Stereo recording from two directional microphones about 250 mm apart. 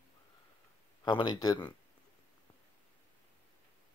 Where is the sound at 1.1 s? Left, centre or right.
Centre.